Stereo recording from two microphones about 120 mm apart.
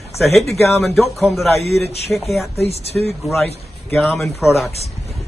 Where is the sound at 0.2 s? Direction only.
Centre (ahead or behind).